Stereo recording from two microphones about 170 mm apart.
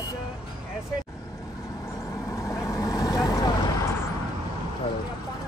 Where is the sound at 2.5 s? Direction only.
20° left (ahead or behind).